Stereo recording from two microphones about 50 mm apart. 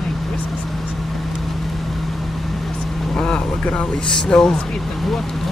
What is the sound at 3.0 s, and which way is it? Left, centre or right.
Vehicle, centre.